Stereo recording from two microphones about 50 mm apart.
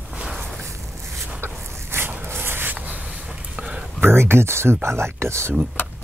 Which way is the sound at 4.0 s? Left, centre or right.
Right.